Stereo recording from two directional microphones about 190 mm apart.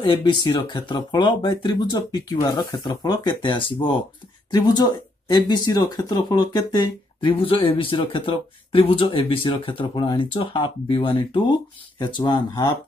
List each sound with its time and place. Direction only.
0.0 s speech: 25° left (ahead or behind)